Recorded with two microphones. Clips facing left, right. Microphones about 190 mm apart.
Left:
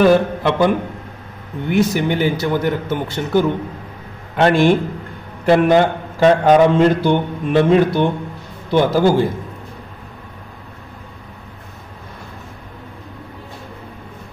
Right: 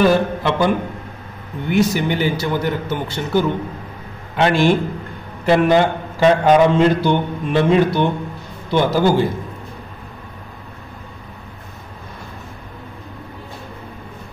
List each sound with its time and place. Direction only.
0.0 s a man's voice: 55° left (ahead or behind)
1.7 s a man's voice: 55° left (ahead or behind)